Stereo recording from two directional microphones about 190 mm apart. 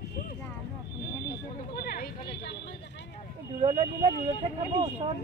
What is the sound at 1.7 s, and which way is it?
Speech, 50° left (ahead or behind).